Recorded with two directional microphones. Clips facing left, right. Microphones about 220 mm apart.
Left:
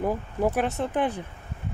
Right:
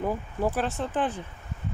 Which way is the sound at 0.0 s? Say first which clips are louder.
Left 2 dB; 15° left (ahead or behind).